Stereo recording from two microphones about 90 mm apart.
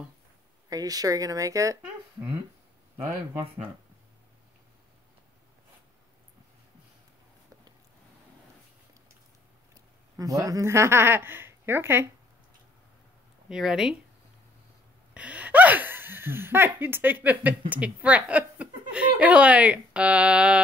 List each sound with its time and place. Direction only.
0.7 s speech: 45° right (ahead or behind)
10.1 s speech: 40° right (ahead or behind)
13.5 s speech: 5° right (ahead or behind)
15.1 s speech: 15° right (ahead or behind)